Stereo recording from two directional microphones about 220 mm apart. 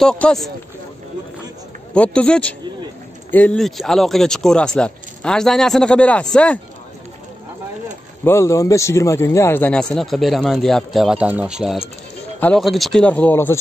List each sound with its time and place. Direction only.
0.0 s a man's voice: centre (ahead or behind)
2.0 s a man's voice: 5° left (ahead or behind)
8.2 s a man's voice: 10° left (ahead or behind)